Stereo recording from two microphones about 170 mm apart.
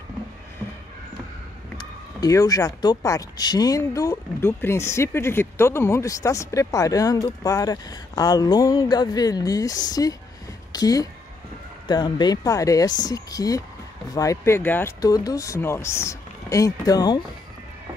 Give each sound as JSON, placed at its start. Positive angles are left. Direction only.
{"t": 1.8, "sound": "a woman's voice", "side_deg": 20}